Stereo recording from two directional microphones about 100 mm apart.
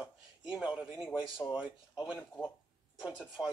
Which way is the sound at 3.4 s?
5° right (ahead or behind).